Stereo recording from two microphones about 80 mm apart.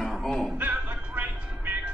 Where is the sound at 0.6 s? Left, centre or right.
Right.